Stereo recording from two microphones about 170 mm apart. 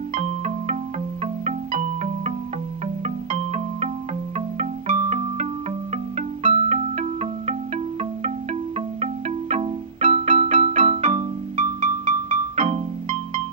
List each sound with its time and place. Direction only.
0.1 s music: 45° right (ahead or behind)